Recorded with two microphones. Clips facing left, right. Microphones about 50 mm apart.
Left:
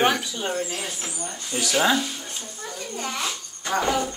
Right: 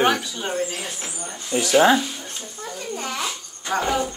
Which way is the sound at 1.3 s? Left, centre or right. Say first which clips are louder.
Right 7 dB; right.